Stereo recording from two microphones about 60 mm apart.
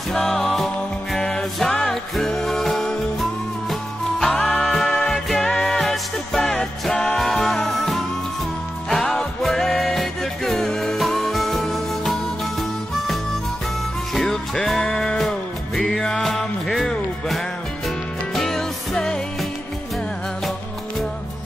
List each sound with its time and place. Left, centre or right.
0.1 s music: centre
4.2 s music: left
4.6 s music: centre